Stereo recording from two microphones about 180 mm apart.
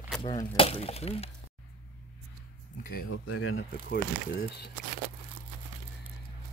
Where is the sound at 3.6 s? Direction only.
65° left (ahead or behind).